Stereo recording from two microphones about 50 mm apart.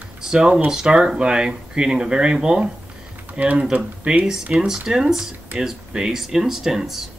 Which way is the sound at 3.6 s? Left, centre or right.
Centre.